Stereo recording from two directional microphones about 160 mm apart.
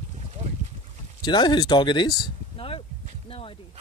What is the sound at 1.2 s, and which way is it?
Speech, 25° left (ahead or behind).